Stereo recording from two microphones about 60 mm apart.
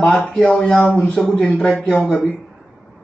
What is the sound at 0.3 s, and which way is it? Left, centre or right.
Speech, centre.